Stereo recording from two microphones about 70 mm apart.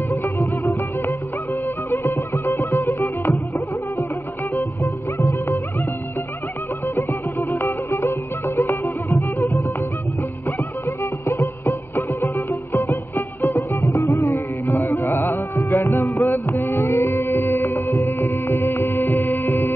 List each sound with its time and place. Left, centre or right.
0.1 s music: left
7.0 s music: left
11.2 s music: left
14.7 s music: left